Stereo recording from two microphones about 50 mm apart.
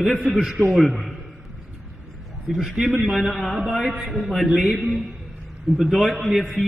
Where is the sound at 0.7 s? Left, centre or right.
Centre.